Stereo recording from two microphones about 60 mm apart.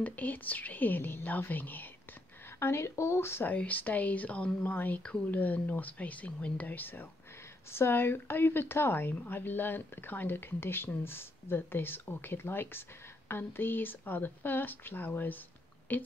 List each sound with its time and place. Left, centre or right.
0.0 s speech: left
2.6 s speech: left
3.4 s speech: left